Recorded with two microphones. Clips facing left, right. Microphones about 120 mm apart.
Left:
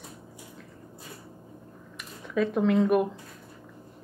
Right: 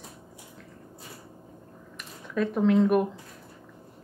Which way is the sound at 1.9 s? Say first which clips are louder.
Left 2 dB; centre (ahead or behind).